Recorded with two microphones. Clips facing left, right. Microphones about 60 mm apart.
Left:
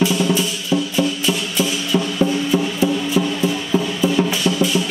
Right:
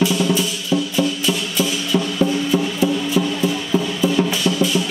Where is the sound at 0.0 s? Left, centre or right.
Left.